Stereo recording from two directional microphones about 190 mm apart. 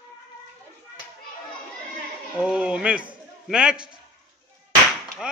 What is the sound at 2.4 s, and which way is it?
A man's voice, 5° right (ahead or behind).